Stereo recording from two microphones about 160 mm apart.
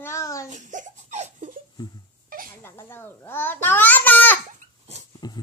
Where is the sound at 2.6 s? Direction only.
15° left (ahead or behind).